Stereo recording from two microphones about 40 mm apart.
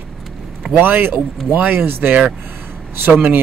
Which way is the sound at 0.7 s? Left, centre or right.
Right.